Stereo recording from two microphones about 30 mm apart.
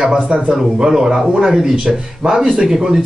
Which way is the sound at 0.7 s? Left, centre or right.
Centre.